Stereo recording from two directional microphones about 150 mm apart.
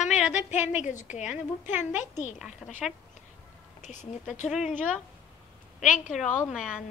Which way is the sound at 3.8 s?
55° left (ahead or behind).